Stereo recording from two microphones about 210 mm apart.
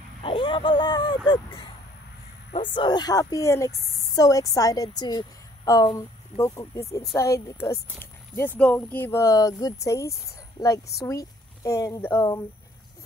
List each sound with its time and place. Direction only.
0.2 s a woman's voice: 25° left (ahead or behind)